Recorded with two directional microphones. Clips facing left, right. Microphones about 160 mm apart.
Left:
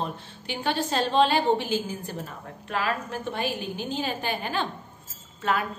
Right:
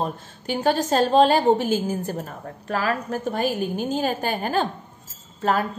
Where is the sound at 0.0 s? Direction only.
45° right (ahead or behind).